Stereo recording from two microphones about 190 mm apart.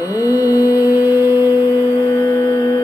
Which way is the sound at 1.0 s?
15° right (ahead or behind).